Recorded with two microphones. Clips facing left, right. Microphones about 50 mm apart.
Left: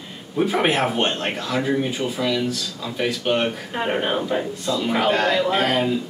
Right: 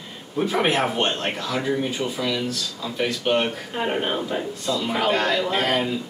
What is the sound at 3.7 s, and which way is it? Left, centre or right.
A man's voice, centre.